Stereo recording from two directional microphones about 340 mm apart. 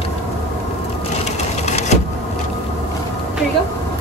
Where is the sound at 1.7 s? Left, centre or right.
Centre.